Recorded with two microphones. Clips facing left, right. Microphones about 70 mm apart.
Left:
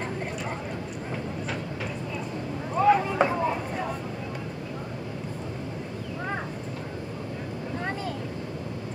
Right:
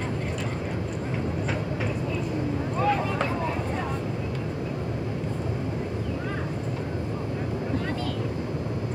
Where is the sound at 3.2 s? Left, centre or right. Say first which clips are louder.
Left 4 dB; centre.